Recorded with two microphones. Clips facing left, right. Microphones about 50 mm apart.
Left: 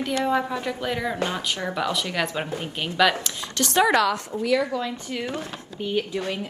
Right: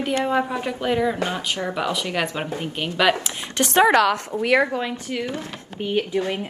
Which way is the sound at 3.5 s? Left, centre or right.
Right.